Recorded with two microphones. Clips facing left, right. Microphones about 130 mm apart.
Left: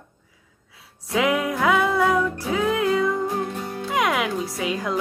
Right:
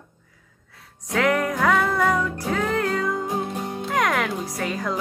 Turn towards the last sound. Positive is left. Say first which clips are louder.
# left 1 dB
turn(degrees=0)  # may be behind; listen again after turning